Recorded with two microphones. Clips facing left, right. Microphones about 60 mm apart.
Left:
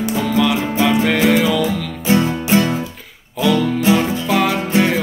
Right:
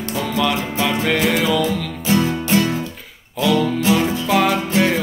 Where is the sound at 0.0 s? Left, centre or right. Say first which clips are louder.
Left 4 dB; centre.